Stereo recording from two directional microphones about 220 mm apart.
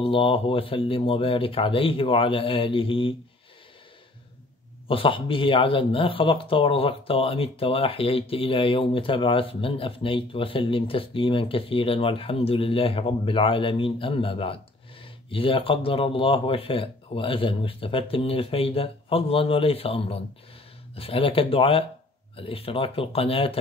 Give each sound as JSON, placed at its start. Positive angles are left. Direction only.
{"t": 0.0, "sound": "speech", "side_deg": 25}
{"t": 4.8, "sound": "speech", "side_deg": 25}